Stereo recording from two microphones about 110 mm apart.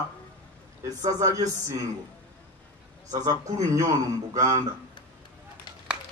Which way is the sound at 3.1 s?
35° right (ahead or behind).